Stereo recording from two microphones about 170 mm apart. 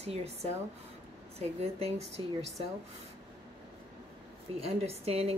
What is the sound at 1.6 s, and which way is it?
Speech, 35° right (ahead or behind).